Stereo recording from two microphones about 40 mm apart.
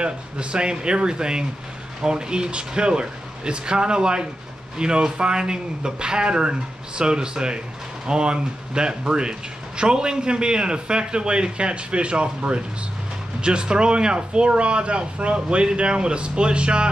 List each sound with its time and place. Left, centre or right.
0.0 s speech: right